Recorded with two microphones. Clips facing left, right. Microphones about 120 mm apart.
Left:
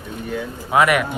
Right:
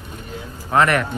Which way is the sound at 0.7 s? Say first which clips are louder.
Left 1 dB; 10° left (ahead or behind).